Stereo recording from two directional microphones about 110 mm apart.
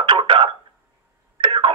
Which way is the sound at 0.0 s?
50° right (ahead or behind).